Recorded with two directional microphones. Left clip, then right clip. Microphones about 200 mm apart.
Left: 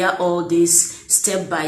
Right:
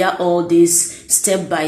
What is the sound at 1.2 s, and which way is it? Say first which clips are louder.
Speech: right 5 dB; 30° right (ahead or behind).